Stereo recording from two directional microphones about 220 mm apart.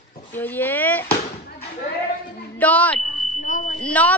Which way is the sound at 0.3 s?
10° left (ahead or behind).